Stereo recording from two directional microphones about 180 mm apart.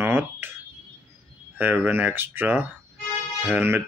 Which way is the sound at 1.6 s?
10° right (ahead or behind).